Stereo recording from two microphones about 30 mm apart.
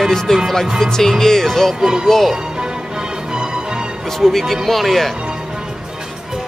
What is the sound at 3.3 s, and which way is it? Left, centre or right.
Music, right.